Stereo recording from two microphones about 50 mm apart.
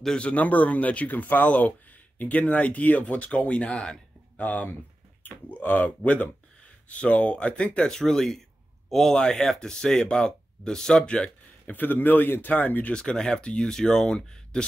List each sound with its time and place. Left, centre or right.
0.2 s speech: left
5.2 s speech: left; by 11.2 s centre
11.6 s speech: left
12.9 s speech: centre